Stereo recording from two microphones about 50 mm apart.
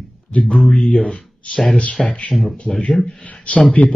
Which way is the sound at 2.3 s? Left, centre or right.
Centre.